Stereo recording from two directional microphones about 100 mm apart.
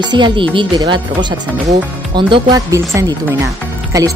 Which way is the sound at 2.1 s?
50° right (ahead or behind).